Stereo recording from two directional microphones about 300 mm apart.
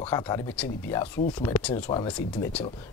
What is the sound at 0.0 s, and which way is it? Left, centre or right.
Speech, centre.